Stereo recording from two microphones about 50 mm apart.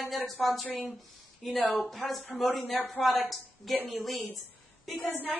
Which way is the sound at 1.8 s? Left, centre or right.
Centre.